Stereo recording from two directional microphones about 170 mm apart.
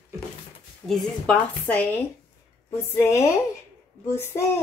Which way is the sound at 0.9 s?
5° left (ahead or behind).